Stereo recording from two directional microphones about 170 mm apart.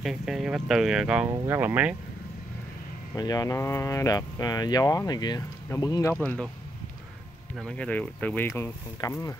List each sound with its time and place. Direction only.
0.0 s speech: centre (ahead or behind)
1.3 s speech: 15° right (ahead or behind)
3.2 s speech: 20° left (ahead or behind)
6.2 s speech: 5° left (ahead or behind)
7.5 s speech: 5° left (ahead or behind)